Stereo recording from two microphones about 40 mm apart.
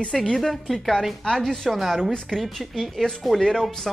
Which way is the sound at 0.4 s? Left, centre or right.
Centre.